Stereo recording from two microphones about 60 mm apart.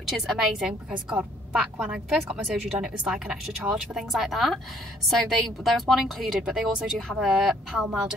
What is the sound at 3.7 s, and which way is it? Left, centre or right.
Speech, centre.